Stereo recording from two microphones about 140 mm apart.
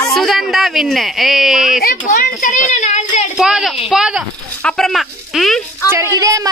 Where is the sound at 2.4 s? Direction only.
65° left (ahead or behind).